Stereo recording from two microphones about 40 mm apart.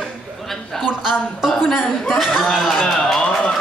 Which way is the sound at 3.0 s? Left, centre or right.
Centre.